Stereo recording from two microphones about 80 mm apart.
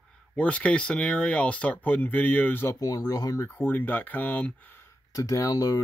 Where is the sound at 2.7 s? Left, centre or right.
Left.